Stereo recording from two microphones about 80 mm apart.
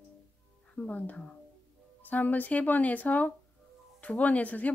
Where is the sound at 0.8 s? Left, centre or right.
Centre.